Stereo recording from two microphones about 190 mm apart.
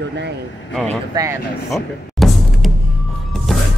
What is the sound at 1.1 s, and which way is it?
Speech, 15° right (ahead or behind).